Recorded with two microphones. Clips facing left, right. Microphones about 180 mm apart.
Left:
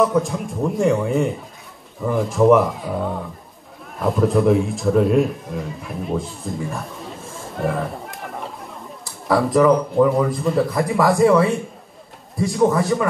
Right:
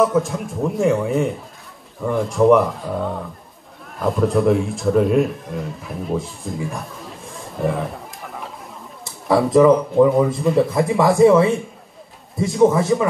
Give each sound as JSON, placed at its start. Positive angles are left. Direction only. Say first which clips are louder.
{"t": 0.0, "sound": "speech", "louder": "right 1 dB", "side_deg": 0}